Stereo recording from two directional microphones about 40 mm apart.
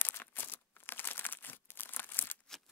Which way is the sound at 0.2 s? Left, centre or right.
Left.